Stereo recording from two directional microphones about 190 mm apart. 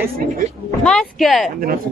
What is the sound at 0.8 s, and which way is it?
Speech, 5° left (ahead or behind).